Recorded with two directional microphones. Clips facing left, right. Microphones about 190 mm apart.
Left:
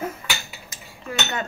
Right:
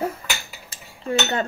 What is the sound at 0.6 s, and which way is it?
Cutlery, 30° right (ahead or behind).